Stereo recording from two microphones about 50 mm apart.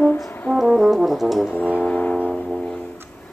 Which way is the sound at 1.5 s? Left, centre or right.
Left.